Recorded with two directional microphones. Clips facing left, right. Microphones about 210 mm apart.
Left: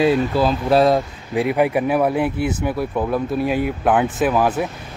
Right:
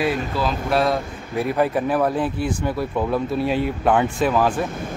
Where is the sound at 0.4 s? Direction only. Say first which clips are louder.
Left 4 dB; 35° left (ahead or behind).